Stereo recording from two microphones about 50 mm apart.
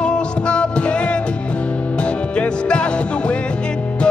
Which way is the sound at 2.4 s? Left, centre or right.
Left.